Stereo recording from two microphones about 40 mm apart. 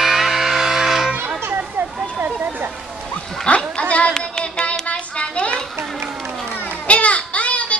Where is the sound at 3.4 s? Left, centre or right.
Left.